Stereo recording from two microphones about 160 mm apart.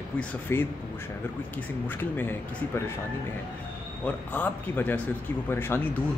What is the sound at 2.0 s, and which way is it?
Speech, 15° left (ahead or behind).